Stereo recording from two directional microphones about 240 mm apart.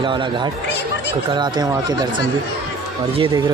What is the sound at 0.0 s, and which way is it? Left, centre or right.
Speech, centre.